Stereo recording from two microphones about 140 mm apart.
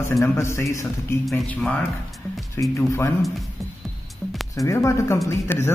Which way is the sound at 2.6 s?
20° left (ahead or behind).